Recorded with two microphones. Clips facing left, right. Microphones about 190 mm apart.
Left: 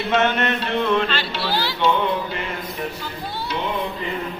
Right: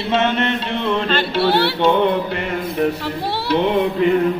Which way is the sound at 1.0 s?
55° right (ahead or behind).